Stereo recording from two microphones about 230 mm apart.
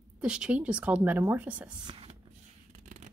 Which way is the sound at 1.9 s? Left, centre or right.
Right.